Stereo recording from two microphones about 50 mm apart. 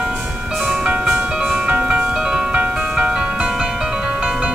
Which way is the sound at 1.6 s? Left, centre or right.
Right.